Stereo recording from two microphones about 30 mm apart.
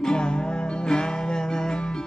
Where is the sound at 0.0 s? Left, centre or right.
Left.